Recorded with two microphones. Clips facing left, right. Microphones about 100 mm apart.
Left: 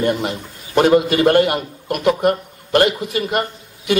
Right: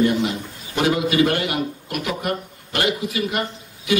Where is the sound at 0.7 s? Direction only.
45° left (ahead or behind).